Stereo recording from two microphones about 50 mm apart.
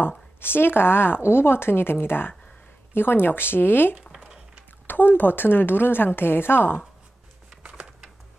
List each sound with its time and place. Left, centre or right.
0.4 s speech: left